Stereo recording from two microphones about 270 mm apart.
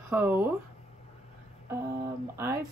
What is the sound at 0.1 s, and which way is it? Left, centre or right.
Speech, centre.